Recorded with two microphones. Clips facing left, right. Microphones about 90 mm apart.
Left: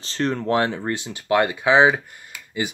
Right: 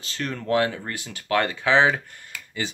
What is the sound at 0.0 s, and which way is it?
Speech, 30° left (ahead or behind).